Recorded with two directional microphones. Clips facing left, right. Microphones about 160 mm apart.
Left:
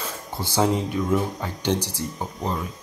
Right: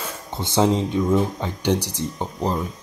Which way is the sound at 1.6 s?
15° right (ahead or behind).